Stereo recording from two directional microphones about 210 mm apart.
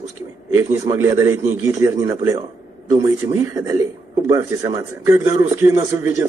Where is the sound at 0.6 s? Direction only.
15° right (ahead or behind).